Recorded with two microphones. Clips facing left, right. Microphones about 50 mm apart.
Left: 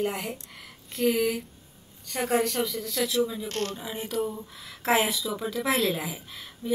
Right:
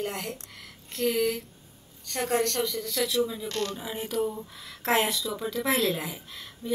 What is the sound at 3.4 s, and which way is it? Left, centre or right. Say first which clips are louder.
Speech: even; left.